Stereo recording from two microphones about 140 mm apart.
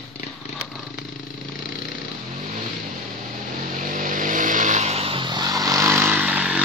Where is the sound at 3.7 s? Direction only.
70° right (ahead or behind); by 6.6 s 10° right (ahead or behind).